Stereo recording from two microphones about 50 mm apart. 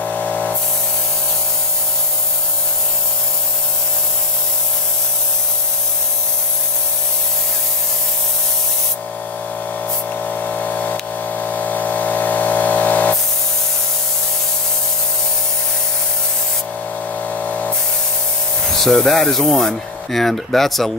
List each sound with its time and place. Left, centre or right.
0.0 s spray: left
10.1 s a sound: left
17.2 s spray: left
18.8 s speech: centre